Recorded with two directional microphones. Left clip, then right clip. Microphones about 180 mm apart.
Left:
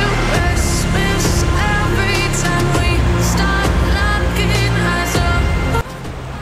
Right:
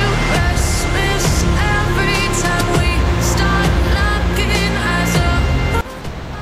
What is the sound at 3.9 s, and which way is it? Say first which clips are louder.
Music: even; centre (ahead or behind).